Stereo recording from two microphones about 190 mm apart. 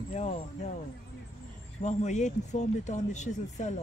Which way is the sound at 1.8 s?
40° left (ahead or behind).